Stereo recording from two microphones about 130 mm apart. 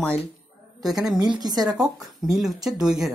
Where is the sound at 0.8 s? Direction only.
Centre (ahead or behind).